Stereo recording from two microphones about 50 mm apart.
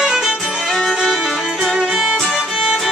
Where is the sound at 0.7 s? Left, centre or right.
Centre.